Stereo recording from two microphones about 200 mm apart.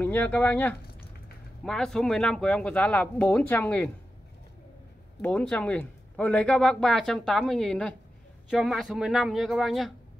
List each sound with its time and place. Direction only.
0.0 s speech: 10° left (ahead or behind)
5.2 s speech: 5° left (ahead or behind)